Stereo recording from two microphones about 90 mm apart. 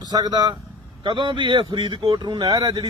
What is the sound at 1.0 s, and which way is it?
Speech, 65° right (ahead or behind).